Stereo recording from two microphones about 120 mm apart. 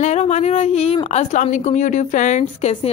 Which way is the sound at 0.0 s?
70° left (ahead or behind).